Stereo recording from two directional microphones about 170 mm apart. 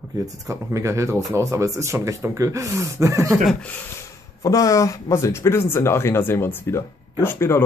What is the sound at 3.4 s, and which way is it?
Speech, 10° left (ahead or behind).